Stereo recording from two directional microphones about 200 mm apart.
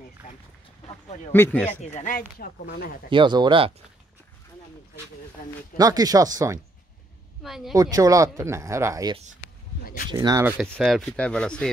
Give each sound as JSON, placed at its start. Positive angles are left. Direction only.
{"t": 1.3, "sound": "speech", "side_deg": 10}
{"t": 1.8, "sound": "speech", "side_deg": 35}
{"t": 3.1, "sound": "speech", "side_deg": -25}
{"t": 5.8, "sound": "speech", "side_deg": -20}
{"t": 7.4, "sound": "speech", "side_deg": 0}
{"t": 7.7, "sound": "speech", "side_deg": -15}
{"t": 10.1, "sound": "speech", "side_deg": -20}
{"t": 10.7, "sound": "speech", "side_deg": 0}